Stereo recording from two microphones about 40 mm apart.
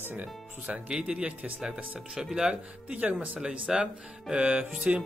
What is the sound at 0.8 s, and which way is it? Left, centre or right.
Music, right.